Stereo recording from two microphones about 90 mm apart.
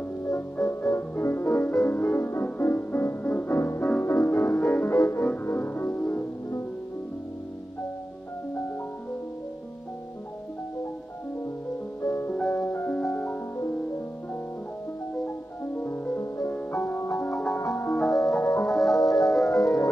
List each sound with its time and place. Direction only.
0.2 s music: 30° left (ahead or behind)
4.9 s music: 35° left (ahead or behind)
12.0 s music: 35° left (ahead or behind)
12.3 s music: 20° left (ahead or behind); by 18.7 s 35° left (ahead or behind)
18.7 s music: centre (ahead or behind)
18.9 s music: 45° left (ahead or behind)